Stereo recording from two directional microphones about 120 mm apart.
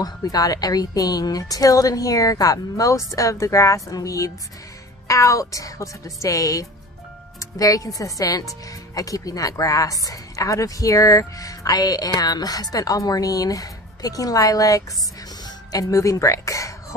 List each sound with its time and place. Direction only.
0.0 s speech: 30° left (ahead or behind)